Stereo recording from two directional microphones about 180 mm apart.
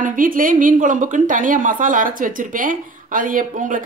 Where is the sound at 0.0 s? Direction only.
50° right (ahead or behind).